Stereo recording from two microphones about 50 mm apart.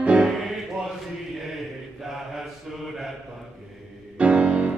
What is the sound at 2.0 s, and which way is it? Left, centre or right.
Mantra, centre.